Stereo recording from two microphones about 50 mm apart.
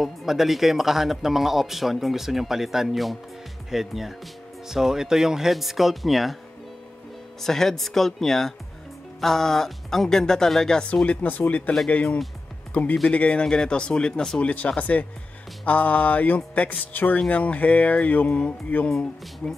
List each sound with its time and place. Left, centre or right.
0.0 s a man's voice: centre
7.4 s speech: centre
11.1 s speech: left
11.9 s music: left
12.7 s speech: left; by 14.4 s centre
14.4 s music: left
15.6 s speech: left
17.3 s music: left
18.9 s speech: centre